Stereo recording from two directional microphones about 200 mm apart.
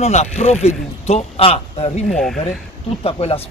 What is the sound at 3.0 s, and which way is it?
Speech, 30° left (ahead or behind).